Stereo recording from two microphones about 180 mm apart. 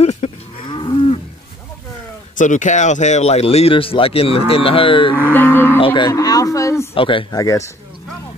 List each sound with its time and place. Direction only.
0.0 s cattle: 35° left (ahead or behind)
0.7 s moo: 25° left (ahead or behind)
2.3 s speech: 45° left (ahead or behind); by 5.1 s 30° left (ahead or behind)
5.3 s cattle: 10° left (ahead or behind)
5.9 s speech: 20° left (ahead or behind)
6.9 s speech: 30° left (ahead or behind)